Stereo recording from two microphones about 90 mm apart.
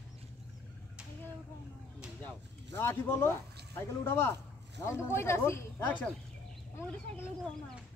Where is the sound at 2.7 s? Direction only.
25° left (ahead or behind).